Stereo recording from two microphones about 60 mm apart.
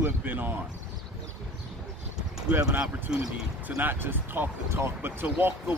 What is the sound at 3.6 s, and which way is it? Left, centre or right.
Speech, right.